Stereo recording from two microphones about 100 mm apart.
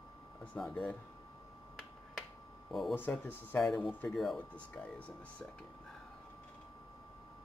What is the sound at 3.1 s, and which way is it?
Speech, 15° left (ahead or behind).